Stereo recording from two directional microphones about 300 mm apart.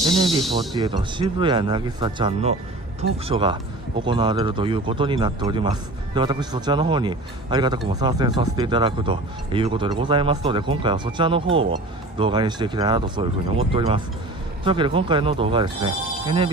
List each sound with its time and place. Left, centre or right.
0.7 s speech: centre